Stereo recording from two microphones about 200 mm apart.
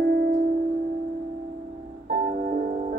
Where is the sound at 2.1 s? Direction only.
45° right (ahead or behind).